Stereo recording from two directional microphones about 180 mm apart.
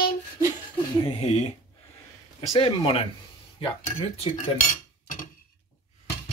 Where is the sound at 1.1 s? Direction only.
35° left (ahead or behind).